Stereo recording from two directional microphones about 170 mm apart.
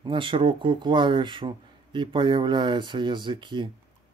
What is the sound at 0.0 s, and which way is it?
Speech, 30° right (ahead or behind).